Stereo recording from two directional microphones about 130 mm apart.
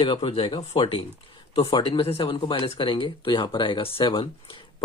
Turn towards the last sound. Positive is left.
turn(degrees=40)  # may be behind; listen again after turning